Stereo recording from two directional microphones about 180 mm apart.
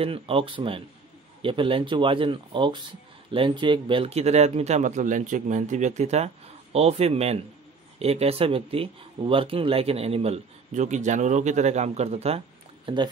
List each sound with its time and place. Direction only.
0.0 s speech: 30° right (ahead or behind)
12.8 s speech: 25° right (ahead or behind)